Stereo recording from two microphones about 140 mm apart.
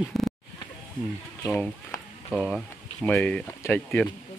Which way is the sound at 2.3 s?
Centre (ahead or behind).